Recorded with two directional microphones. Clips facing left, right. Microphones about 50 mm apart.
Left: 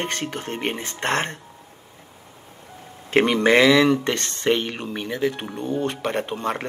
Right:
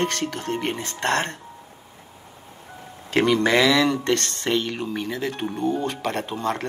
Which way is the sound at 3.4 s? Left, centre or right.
Left.